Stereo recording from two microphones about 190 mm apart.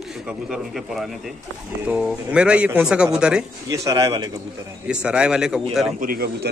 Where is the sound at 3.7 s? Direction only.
15° right (ahead or behind).